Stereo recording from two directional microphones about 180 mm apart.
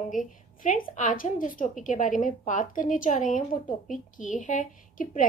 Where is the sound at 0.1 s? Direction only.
45° left (ahead or behind).